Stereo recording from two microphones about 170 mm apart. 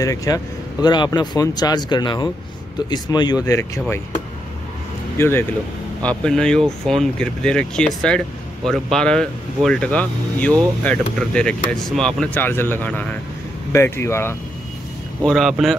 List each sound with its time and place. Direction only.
0.0 s speech: 20° left (ahead or behind)
5.1 s speech: 15° left (ahead or behind)
15.2 s speech: centre (ahead or behind)